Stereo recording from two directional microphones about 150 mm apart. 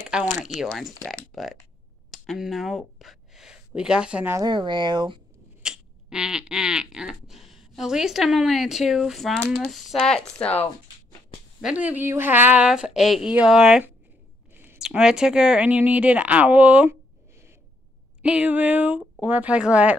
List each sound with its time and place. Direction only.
0.2 s speech: 55° left (ahead or behind)
0.6 s speech: centre (ahead or behind)
4.3 s speech: 30° right (ahead or behind)
5.6 s speech: 5° right (ahead or behind); by 10.7 s 10° left (ahead or behind)
11.6 s speech: 10° right (ahead or behind)
18.2 s speech: 10° right (ahead or behind)